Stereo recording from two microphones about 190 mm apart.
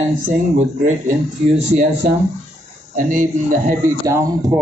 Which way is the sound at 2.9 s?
45° right (ahead or behind).